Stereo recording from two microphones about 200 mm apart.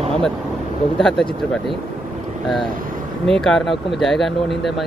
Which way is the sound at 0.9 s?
Centre (ahead or behind).